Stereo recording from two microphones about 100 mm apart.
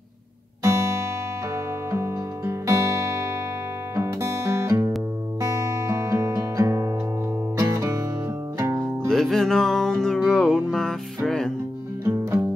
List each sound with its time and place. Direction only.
0.7 s music: 30° right (ahead or behind)
9.0 s music: 5° left (ahead or behind)
12.0 s music: 25° right (ahead or behind)